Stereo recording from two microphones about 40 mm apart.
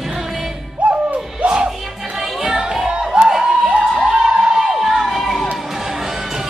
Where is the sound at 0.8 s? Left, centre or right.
Right.